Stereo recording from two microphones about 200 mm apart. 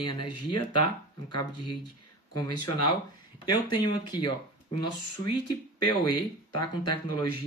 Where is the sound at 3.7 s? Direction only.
20° left (ahead or behind).